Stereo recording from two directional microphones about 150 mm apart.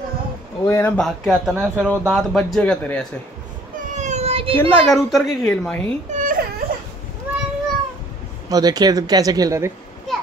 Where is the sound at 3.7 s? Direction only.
50° right (ahead or behind).